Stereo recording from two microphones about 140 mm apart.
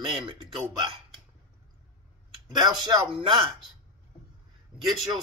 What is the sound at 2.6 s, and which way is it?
Speech, 30° right (ahead or behind).